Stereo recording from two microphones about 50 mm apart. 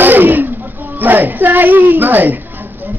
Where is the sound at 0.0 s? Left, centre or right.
Right.